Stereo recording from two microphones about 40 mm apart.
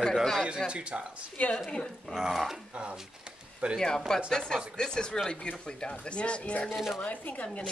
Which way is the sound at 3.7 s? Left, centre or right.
Centre.